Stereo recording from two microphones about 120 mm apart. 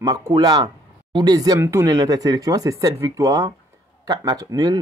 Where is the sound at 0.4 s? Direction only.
35° right (ahead or behind).